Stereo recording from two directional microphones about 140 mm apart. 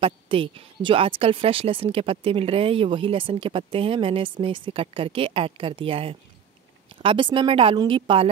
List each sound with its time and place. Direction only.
0.0 s speech: 40° right (ahead or behind)